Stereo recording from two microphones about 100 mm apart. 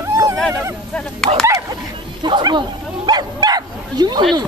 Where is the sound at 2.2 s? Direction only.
50° right (ahead or behind).